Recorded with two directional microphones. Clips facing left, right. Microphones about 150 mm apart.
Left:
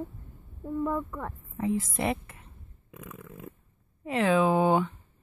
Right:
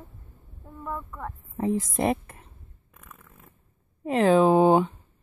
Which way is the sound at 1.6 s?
40° right (ahead or behind).